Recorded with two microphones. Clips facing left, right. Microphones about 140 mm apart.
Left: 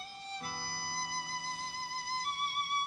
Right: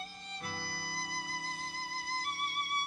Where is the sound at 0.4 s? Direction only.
30° left (ahead or behind).